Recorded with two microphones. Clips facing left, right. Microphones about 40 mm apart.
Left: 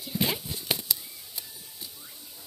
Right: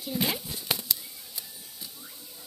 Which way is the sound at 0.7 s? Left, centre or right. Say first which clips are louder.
Left 1 dB; left.